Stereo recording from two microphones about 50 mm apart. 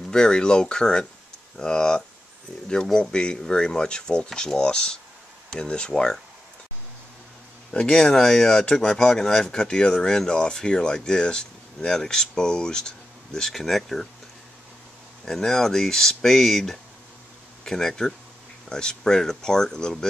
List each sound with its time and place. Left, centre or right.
0.1 s speech: centre
7.7 s speech: centre
15.2 s speech: centre